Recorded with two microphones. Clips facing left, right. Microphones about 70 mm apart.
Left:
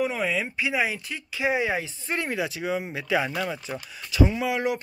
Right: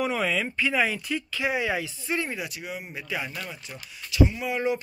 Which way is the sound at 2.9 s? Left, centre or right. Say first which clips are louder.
Left 7 dB; left.